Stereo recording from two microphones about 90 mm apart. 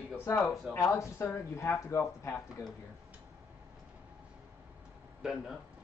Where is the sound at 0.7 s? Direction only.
35° left (ahead or behind).